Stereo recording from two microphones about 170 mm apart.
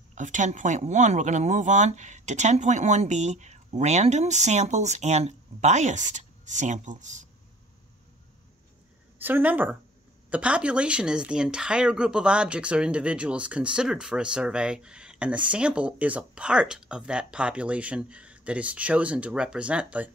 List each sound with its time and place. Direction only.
0.1 s speech: 45° right (ahead or behind)
9.2 s speech: 10° right (ahead or behind)